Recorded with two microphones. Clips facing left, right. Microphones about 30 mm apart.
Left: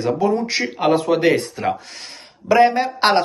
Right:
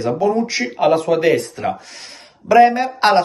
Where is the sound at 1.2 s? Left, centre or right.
Left.